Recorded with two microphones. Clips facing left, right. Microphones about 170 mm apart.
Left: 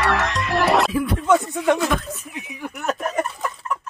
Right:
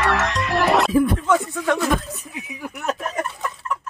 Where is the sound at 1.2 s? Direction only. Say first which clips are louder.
Left 2 dB; 20° left (ahead or behind).